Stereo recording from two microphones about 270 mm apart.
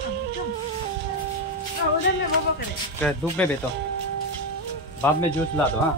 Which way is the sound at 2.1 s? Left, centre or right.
Left.